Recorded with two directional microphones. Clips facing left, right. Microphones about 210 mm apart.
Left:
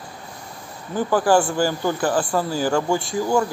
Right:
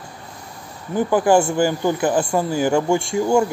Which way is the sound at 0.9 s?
20° right (ahead or behind).